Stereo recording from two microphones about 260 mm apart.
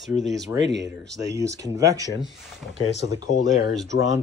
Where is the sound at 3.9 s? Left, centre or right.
Left.